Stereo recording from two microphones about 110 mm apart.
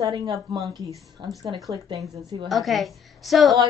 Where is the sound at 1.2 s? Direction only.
50° right (ahead or behind).